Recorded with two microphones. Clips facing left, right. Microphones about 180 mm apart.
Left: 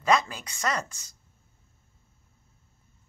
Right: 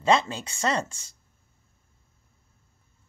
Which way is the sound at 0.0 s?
25° right (ahead or behind).